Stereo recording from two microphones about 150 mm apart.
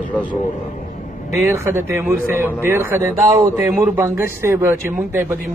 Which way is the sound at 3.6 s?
5° right (ahead or behind).